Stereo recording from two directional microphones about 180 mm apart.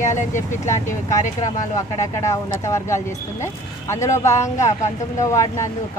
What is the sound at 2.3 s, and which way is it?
Speech, 15° left (ahead or behind).